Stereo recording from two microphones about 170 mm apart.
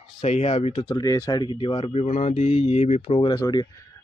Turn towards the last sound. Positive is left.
turn(degrees=20)  # may be behind; listen again after turning